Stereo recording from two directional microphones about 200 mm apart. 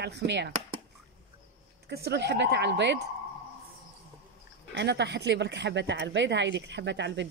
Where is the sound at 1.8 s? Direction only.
55° right (ahead or behind).